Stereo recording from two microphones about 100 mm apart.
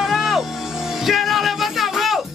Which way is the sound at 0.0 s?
Centre (ahead or behind).